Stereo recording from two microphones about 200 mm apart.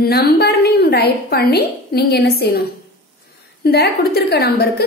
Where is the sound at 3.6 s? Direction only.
50° left (ahead or behind).